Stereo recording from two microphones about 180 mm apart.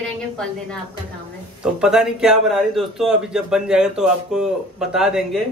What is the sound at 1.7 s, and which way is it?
A man's voice, 5° right (ahead or behind).